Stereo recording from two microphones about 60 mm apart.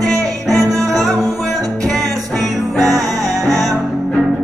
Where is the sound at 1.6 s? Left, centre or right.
Centre.